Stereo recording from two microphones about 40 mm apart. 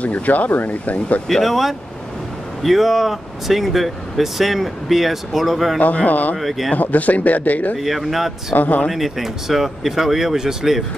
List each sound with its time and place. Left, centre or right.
0.0 s speech: left
1.3 s speech: centre
6.0 s speech: left
6.3 s speech: centre
6.7 s speech: left
7.7 s speech: centre
8.5 s speech: left
8.9 s speech: centre